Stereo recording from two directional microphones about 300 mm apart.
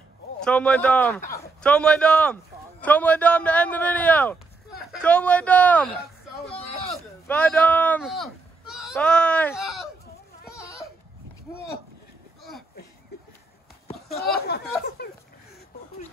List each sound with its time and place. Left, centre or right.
0.4 s a man's voice: centre
6.5 s a sound: centre
7.2 s speech: centre
14.1 s speech: left